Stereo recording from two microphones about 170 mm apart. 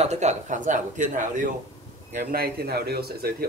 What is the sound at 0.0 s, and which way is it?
Speech, 40° right (ahead or behind).